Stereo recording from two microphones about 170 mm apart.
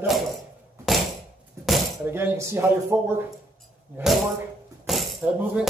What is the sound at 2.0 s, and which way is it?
Speech, 15° right (ahead or behind).